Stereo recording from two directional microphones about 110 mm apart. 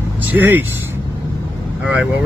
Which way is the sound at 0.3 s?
15° right (ahead or behind).